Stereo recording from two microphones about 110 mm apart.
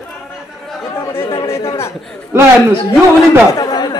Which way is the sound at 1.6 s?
25° left (ahead or behind).